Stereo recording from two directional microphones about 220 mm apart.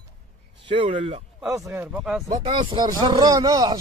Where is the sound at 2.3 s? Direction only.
25° right (ahead or behind).